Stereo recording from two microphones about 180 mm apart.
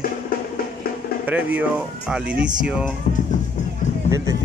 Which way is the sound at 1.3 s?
10° right (ahead or behind).